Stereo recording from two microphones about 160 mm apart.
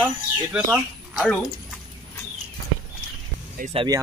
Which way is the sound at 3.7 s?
25° right (ahead or behind).